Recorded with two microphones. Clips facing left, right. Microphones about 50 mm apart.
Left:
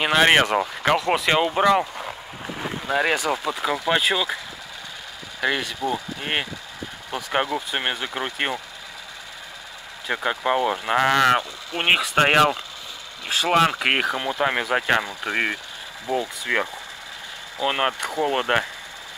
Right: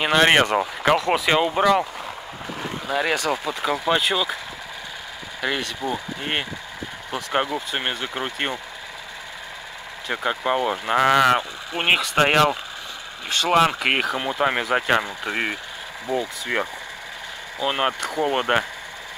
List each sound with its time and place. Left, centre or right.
0.0 s speech: centre
5.4 s speech: centre
10.0 s speech: centre
16.5 s speech: centre
17.6 s speech: centre
18.2 s speech: centre